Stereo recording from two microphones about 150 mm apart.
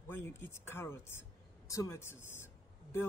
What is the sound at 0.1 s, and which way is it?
A man's voice, 15° left (ahead or behind).